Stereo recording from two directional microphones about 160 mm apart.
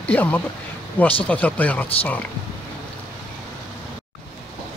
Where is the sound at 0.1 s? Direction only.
10° left (ahead or behind).